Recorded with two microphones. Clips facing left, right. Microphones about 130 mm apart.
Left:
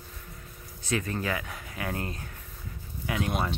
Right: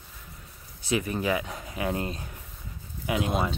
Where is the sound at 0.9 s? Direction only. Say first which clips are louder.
Right 3 dB; 15° right (ahead or behind).